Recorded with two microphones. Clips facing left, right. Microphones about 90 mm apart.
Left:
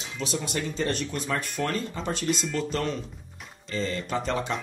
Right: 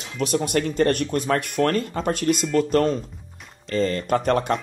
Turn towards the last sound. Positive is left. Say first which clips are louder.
# right 8 dB
turn(degrees=-55)  # may be behind; listen again after turning